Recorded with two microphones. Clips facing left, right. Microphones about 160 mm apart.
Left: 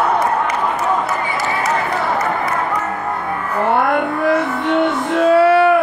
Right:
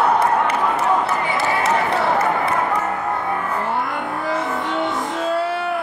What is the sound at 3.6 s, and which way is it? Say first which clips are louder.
Music: left 8 dB; 70° left (ahead or behind).